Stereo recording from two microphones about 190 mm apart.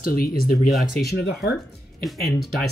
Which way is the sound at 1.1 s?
60° left (ahead or behind).